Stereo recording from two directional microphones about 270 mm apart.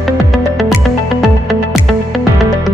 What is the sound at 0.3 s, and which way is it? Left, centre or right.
Music, centre.